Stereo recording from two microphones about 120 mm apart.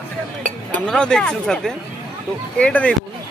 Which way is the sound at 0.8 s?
5° left (ahead or behind).